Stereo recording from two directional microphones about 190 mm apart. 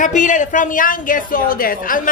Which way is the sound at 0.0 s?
40° left (ahead or behind).